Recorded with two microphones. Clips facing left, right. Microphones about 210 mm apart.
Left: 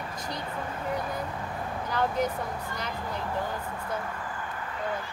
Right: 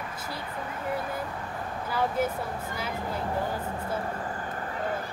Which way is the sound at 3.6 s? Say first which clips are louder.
Right 2 dB; 35° right (ahead or behind).